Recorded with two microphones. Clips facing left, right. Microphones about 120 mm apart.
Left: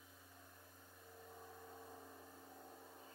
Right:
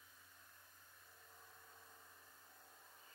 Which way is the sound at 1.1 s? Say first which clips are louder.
Left 10 dB; 40° left (ahead or behind).